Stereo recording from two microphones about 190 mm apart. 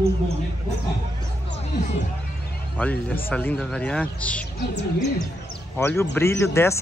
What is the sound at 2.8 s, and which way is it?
Speech, 5° left (ahead or behind).